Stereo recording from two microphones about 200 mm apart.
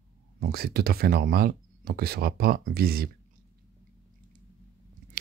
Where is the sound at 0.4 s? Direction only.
50° right (ahead or behind).